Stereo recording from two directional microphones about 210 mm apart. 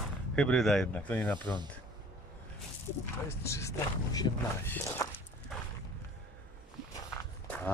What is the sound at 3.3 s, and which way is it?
Speech, 15° left (ahead or behind).